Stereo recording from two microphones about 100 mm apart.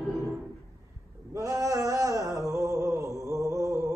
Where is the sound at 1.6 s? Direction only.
35° right (ahead or behind).